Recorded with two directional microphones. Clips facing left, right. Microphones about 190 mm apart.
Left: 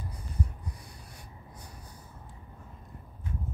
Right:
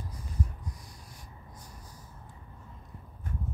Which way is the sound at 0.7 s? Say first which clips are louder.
Left 1 dB; 65° left (ahead or behind).